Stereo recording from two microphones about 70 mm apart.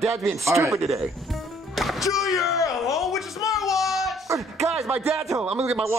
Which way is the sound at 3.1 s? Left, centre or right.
Left.